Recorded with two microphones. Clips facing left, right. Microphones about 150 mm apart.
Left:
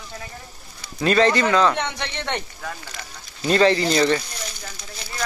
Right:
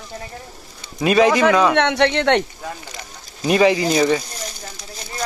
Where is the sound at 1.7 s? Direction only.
75° right (ahead or behind).